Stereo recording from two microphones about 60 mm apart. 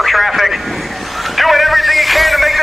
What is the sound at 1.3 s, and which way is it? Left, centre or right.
Music, centre.